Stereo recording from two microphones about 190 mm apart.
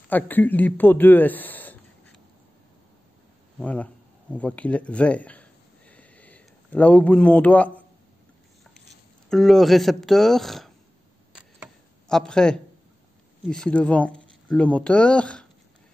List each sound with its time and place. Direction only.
0.1 s a man's voice: 10° left (ahead or behind)
3.5 s a sound: 5° left (ahead or behind)
9.3 s speech: centre (ahead or behind)
12.1 s speech: 5° left (ahead or behind)